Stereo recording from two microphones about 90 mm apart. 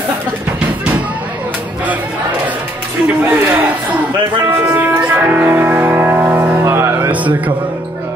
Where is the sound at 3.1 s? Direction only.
20° right (ahead or behind).